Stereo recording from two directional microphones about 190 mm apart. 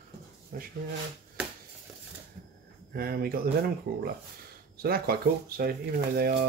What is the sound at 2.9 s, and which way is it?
Speech, 50° right (ahead or behind).